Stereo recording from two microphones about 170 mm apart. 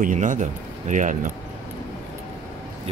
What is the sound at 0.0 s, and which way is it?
Speech, 50° right (ahead or behind).